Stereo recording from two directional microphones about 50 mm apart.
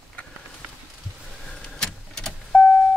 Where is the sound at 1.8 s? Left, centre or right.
Centre.